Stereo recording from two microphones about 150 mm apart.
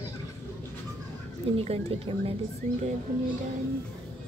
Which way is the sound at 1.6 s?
40° right (ahead or behind).